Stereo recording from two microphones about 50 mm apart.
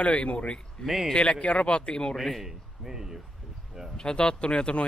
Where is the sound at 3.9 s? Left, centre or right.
Centre.